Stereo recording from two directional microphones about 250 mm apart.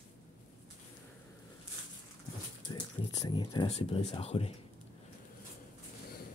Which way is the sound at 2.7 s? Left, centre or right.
Centre.